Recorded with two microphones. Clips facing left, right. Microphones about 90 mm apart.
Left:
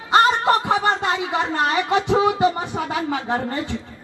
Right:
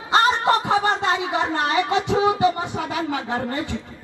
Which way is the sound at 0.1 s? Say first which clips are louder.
Left 2 dB; 25° right (ahead or behind).